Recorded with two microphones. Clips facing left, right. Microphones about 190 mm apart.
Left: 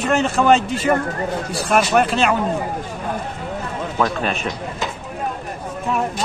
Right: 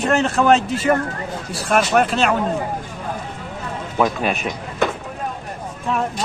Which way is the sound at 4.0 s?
15° right (ahead or behind).